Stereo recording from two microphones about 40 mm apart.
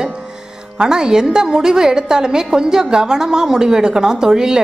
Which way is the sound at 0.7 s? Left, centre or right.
Centre.